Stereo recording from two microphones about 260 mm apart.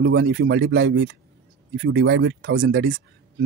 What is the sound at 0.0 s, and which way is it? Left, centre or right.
Speech, right.